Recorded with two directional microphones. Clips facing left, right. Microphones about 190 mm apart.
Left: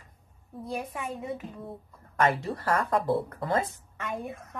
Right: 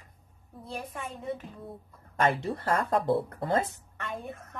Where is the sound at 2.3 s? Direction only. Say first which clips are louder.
Right 1 dB; 25° right (ahead or behind).